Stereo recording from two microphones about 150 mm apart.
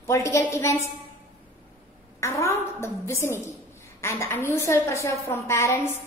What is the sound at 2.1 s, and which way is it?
A woman's voice, 20° left (ahead or behind).